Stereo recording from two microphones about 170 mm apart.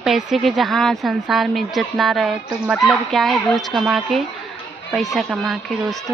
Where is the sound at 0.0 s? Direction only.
Centre (ahead or behind).